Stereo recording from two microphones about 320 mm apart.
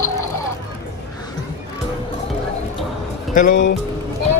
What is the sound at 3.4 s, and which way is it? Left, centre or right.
Speech, left.